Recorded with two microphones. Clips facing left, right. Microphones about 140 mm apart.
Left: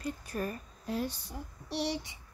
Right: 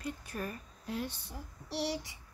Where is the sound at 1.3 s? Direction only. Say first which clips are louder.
Left 2 dB; 20° left (ahead or behind).